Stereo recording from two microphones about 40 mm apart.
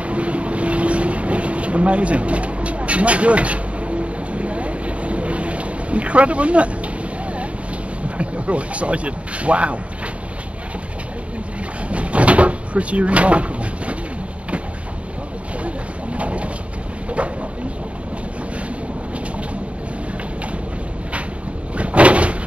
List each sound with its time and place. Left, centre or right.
0.0 s boat: right
8.2 s speech: right
11.9 s cupboard open or close: right
15.6 s pigeon: right
17.1 s a sound: right
21.7 s door: right